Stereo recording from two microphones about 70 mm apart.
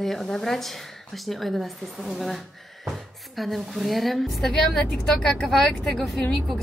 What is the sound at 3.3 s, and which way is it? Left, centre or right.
A woman's voice, centre.